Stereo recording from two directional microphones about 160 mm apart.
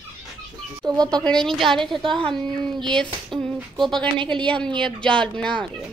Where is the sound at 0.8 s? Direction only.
25° right (ahead or behind).